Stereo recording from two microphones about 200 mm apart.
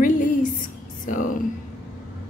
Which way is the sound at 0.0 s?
40° left (ahead or behind).